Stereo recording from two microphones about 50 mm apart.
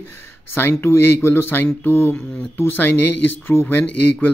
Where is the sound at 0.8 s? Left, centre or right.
Left.